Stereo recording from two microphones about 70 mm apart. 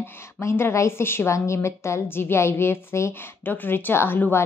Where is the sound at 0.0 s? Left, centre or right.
Left.